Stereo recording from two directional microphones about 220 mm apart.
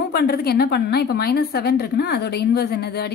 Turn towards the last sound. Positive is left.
turn(degrees=45)  # may be behind; listen again after turning